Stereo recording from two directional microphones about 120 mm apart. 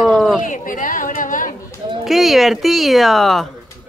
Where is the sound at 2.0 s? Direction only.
Centre (ahead or behind).